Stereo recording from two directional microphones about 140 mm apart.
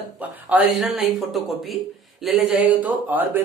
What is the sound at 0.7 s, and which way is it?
Speech, centre (ahead or behind).